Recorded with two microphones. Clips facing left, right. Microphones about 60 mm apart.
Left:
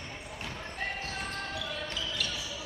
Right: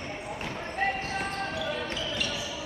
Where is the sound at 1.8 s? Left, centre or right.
Right.